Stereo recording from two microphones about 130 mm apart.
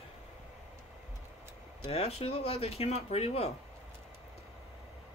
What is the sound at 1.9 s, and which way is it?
Speech, 50° left (ahead or behind).